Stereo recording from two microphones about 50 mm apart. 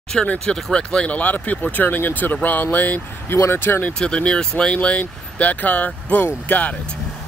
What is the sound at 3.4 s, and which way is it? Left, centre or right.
Speech, left.